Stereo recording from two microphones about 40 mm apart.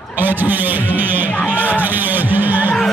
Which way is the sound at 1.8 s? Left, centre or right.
Right.